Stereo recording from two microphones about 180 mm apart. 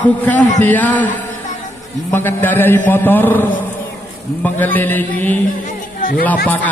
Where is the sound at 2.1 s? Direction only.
10° left (ahead or behind).